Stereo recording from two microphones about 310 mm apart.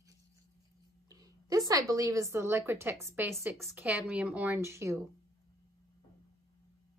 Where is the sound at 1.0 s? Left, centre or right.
Centre.